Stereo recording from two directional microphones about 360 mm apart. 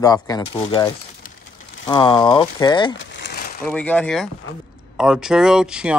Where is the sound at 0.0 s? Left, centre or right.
Centre.